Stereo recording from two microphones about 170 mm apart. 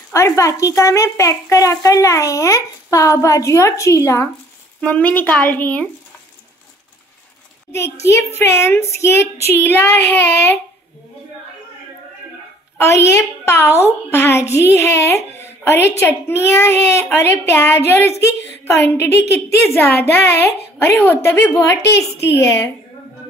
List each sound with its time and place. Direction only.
0.1 s a child's voice: 15° left (ahead or behind)
7.7 s a child's voice: 15° left (ahead or behind)
12.7 s a child's voice: 15° left (ahead or behind)